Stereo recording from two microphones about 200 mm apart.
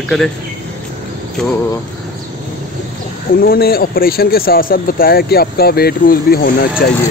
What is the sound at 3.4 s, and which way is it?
Speech, 50° left (ahead or behind).